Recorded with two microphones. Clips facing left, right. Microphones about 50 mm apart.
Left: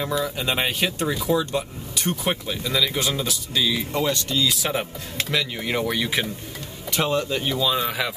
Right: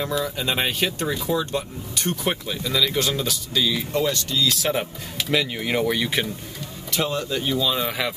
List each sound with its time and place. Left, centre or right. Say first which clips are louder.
0.2 s speech: even; centre
5.3 s speech: right 3 dB; centre
7.0 s speech: left 2 dB; left
7.6 s speech: left 1 dB; centre